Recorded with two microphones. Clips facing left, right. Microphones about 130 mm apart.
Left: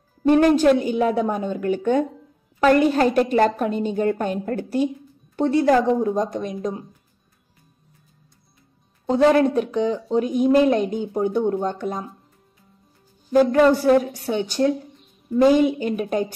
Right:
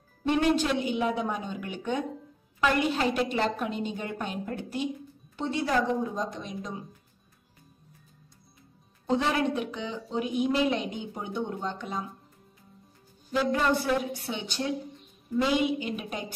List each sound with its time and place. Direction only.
0.5 s a woman's voice: 45° left (ahead or behind)
9.0 s speech: 40° left (ahead or behind)
13.3 s speech: 45° left (ahead or behind)